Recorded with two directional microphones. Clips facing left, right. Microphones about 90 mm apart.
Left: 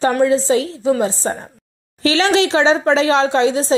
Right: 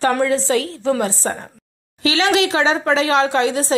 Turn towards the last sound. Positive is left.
turn(degrees=25)  # may be behind; listen again after turning